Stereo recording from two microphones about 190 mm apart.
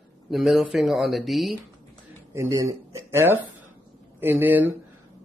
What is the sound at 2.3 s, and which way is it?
A man's voice, 15° right (ahead or behind).